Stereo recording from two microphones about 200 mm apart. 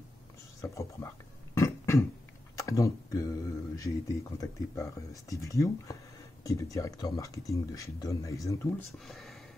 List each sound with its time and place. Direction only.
0.6 s a sound: 15° left (ahead or behind)
2.5 s speech: 15° left (ahead or behind)
9.0 s speech: centre (ahead or behind)